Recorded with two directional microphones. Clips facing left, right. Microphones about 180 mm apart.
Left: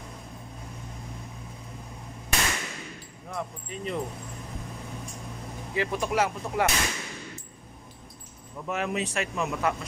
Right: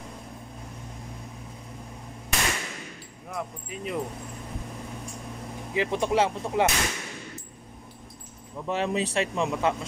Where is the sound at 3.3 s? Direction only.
5° right (ahead or behind).